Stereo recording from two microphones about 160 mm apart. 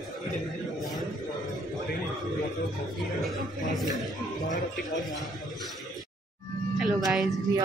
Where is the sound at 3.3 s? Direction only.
Centre (ahead or behind).